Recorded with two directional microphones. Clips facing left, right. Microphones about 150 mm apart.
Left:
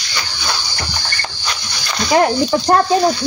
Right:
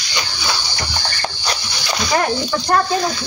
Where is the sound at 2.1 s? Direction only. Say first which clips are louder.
Left 6 dB; 30° left (ahead or behind).